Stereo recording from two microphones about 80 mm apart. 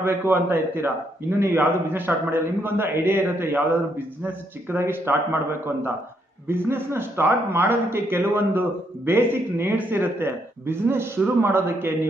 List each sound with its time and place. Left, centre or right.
0.0 s a man's voice: right
6.4 s a man's voice: right